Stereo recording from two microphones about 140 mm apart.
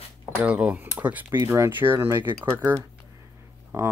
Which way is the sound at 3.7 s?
20° right (ahead or behind).